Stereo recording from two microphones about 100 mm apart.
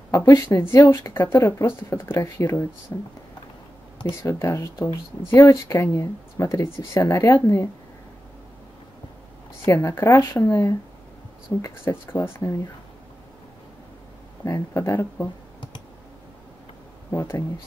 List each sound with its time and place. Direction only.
0.1 s speech: 30° left (ahead or behind)
4.1 s speech: 25° left (ahead or behind)
9.7 s speech: 25° left (ahead or behind)
11.6 s speech: 25° left (ahead or behind)
14.4 s speech: 30° left (ahead or behind)
17.1 s speech: 25° left (ahead or behind)